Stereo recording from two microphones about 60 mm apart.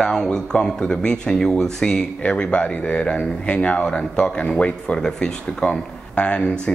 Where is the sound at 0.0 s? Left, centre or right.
Centre.